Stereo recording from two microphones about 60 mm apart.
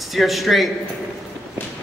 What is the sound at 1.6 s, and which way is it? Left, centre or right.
Walk, left.